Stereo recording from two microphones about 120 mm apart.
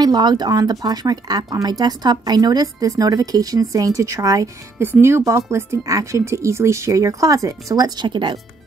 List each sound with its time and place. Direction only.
0.0 s speech: 35° right (ahead or behind)